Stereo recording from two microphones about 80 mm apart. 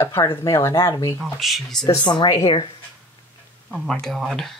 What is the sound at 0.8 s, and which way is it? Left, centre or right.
Speech, left.